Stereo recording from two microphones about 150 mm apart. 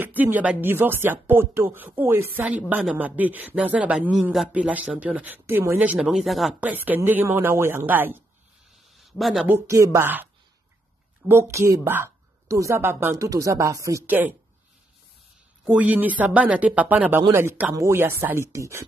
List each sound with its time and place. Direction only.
0.0 s speech: 10° right (ahead or behind)
5.9 s speech: centre (ahead or behind)
9.2 s speech: centre (ahead or behind)
9.5 s speech: 20° right (ahead or behind)
11.2 s a woman's voice: 15° right (ahead or behind)
15.6 s speech: 10° right (ahead or behind)